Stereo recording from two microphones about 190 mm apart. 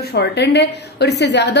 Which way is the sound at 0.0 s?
60° left (ahead or behind).